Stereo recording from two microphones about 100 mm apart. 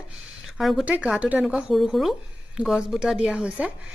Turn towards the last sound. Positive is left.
turn(degrees=-10)  # may be behind; listen again after turning